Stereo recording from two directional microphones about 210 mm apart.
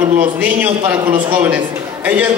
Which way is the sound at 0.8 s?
10° right (ahead or behind).